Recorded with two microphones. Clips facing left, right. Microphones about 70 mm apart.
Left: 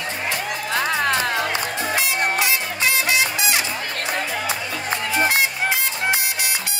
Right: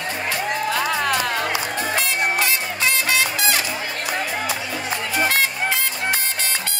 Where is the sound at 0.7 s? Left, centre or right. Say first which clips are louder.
Left 4 dB; left.